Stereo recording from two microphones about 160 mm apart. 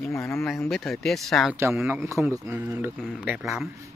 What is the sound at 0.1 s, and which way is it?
Speech, 15° left (ahead or behind).